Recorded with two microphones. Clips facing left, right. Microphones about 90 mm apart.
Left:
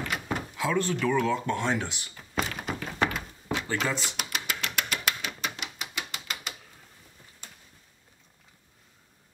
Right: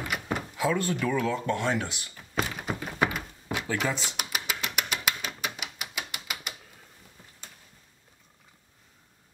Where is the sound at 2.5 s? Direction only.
15° right (ahead or behind).